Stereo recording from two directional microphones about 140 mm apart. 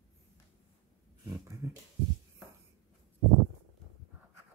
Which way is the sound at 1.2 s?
25° right (ahead or behind).